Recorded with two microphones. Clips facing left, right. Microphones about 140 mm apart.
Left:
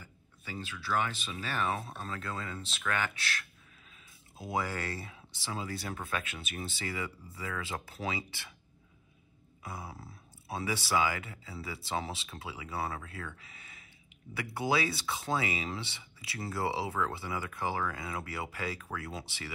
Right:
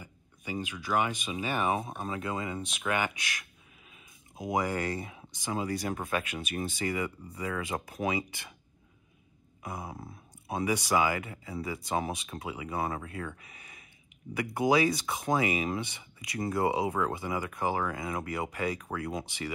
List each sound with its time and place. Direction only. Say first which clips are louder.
0.0 s speech: right 6 dB; 15° right (ahead or behind)
6.3 s speech: right 6 dB; 50° right (ahead or behind)
6.8 s speech: right 5 dB; 20° right (ahead or behind)
9.6 s speech: right 4 dB; 20° right (ahead or behind)